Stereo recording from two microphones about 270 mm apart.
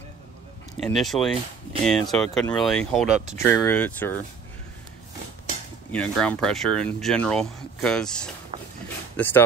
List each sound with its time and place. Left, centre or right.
0.8 s speech: centre
5.9 s speech: centre
8.8 s a sound: centre